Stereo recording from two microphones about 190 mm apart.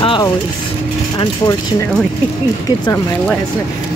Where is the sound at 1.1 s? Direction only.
20° left (ahead or behind).